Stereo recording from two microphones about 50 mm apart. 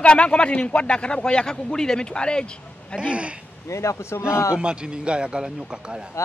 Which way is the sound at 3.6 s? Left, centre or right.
Left.